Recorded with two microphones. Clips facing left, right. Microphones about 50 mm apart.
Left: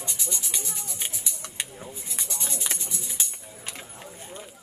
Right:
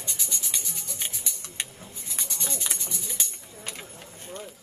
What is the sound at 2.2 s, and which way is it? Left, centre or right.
Music, left.